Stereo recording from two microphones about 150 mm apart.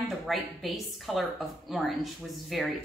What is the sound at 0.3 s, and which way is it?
A woman's voice, centre (ahead or behind).